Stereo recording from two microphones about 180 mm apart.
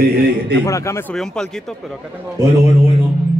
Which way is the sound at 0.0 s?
60° right (ahead or behind).